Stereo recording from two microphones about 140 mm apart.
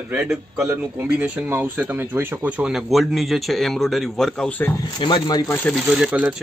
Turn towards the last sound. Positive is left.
turn(degrees=-10)  # may be behind; listen again after turning